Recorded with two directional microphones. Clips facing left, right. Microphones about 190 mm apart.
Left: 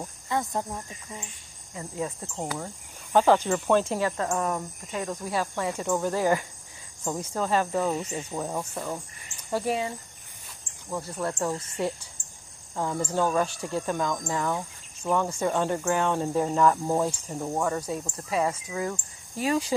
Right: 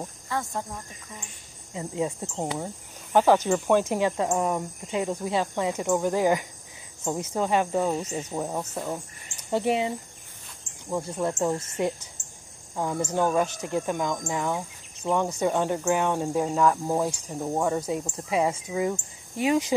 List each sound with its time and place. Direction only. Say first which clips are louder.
0.3 s speech: left 3 dB; 20° left (ahead or behind)
1.7 s speech: right 4 dB; 20° right (ahead or behind)